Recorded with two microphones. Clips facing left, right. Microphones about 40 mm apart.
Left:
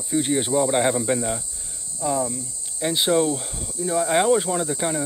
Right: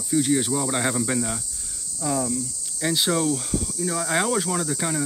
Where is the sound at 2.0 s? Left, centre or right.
Left.